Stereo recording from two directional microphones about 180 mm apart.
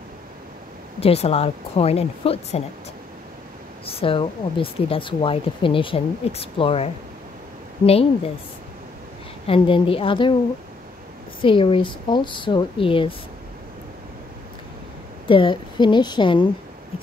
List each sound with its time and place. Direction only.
1.0 s speech: 35° left (ahead or behind)
3.8 s speech: 30° left (ahead or behind)
9.5 s speech: 30° left (ahead or behind)
11.4 s speech: 30° left (ahead or behind)
15.2 s speech: 30° left (ahead or behind)